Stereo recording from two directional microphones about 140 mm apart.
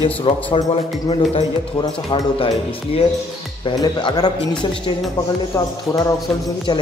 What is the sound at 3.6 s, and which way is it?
Speech, 30° left (ahead or behind).